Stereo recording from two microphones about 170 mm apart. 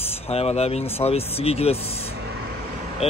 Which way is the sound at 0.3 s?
35° left (ahead or behind).